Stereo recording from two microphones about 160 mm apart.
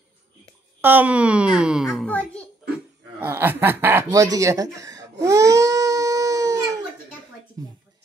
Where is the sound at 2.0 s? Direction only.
10° left (ahead or behind).